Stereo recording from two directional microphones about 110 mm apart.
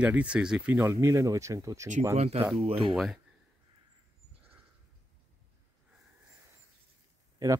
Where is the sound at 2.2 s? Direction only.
70° right (ahead or behind).